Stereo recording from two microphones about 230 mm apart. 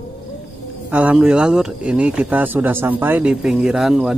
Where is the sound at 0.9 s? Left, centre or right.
Centre.